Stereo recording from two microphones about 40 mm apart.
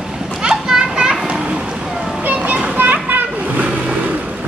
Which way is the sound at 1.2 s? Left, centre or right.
Right.